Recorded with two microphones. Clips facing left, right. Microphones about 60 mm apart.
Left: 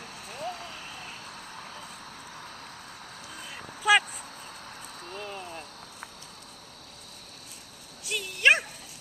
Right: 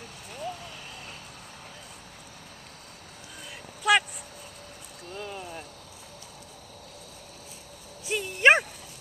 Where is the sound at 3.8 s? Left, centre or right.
Centre.